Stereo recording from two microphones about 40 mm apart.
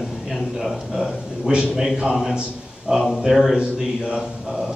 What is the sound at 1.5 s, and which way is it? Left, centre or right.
Speech, right.